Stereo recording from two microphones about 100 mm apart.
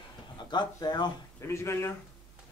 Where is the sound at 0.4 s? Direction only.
45° left (ahead or behind).